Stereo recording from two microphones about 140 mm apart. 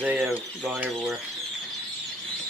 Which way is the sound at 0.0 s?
15° right (ahead or behind).